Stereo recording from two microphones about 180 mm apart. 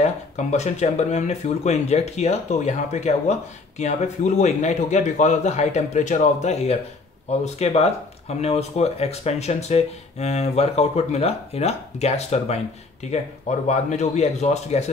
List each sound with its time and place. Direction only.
0.0 s speech: 40° left (ahead or behind)